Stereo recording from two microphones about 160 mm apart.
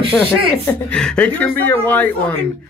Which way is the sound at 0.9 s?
5° left (ahead or behind).